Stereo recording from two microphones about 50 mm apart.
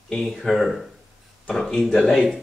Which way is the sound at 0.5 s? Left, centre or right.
Centre.